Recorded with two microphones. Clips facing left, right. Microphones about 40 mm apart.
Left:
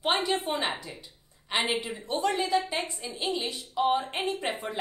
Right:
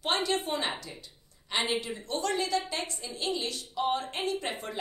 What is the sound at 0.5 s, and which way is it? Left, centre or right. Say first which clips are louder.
A woman's voice: left 2 dB; centre.